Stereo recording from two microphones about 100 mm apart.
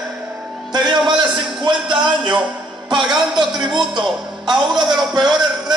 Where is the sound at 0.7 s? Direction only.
45° right (ahead or behind).